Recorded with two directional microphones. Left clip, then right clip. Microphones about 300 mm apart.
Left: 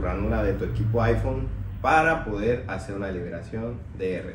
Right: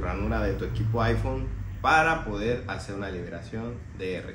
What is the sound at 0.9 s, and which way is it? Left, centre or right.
A man's voice, centre.